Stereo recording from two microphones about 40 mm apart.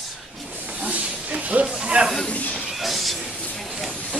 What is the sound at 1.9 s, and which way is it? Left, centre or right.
Speech, right.